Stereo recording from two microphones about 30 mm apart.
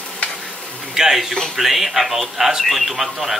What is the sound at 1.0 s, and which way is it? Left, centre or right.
Speech, centre.